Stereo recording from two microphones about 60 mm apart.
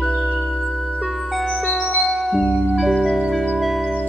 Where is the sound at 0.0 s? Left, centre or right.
Centre.